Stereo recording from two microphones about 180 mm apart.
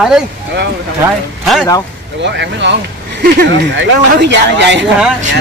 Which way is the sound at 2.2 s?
75° right (ahead or behind).